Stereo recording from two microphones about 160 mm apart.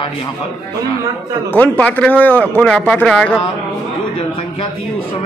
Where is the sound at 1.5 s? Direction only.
10° left (ahead or behind).